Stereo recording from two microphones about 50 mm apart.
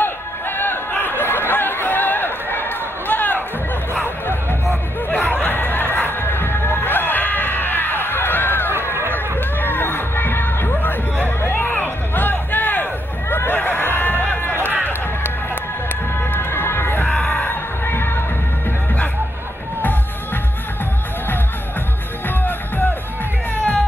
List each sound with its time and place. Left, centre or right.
0.0 s a sound: left
1.5 s chatter: left
3.9 s music: left
5.1 s a sound: left
9.6 s music: left
13.3 s a sound: left
13.6 s music: left
16.2 s music: left
23.5 s music: left